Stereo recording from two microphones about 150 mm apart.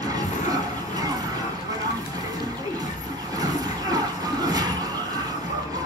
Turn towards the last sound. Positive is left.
turn(degrees=-25)  # may be behind; listen again after turning